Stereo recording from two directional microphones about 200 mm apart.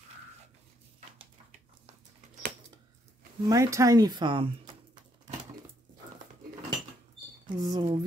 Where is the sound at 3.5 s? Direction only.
15° right (ahead or behind).